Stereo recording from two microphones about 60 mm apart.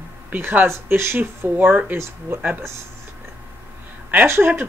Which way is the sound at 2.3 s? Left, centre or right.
Right.